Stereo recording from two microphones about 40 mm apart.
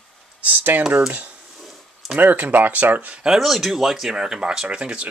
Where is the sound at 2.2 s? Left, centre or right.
Right.